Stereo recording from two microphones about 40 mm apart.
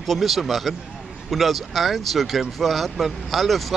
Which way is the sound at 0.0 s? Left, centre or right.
Centre.